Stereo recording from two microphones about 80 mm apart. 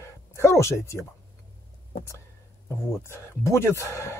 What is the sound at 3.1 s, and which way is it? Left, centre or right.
Speech, left.